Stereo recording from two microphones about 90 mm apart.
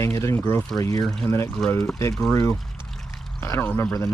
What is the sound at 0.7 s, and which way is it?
Speech, 45° left (ahead or behind).